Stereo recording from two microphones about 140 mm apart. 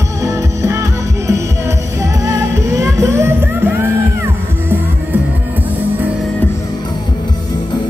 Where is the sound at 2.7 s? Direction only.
20° right (ahead or behind).